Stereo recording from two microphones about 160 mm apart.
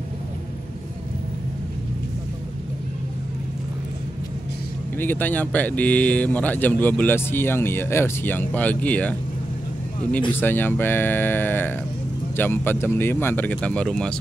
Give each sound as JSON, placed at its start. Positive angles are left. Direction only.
{"t": 4.9, "sound": "speech", "side_deg": 10}
{"t": 10.3, "sound": "speech", "side_deg": 15}